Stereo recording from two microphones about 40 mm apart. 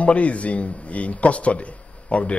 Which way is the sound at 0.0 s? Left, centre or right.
Left.